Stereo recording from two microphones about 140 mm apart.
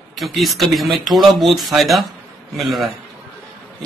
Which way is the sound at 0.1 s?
Centre (ahead or behind).